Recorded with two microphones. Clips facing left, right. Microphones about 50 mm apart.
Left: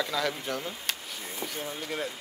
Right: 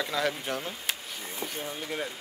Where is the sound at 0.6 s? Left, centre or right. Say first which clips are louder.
Even; centre.